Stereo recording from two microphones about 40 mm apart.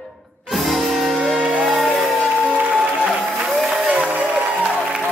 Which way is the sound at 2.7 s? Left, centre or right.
Centre.